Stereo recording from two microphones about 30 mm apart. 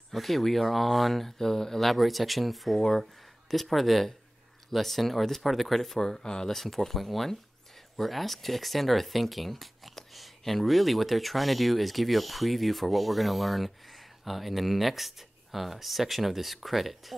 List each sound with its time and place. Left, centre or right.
0.1 s speech: centre
1.4 s speech: centre
1.9 s speech: centre
6.2 s speech: left
6.5 s speech: centre